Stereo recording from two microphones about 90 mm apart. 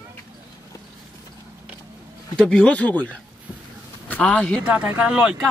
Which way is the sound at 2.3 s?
10° left (ahead or behind).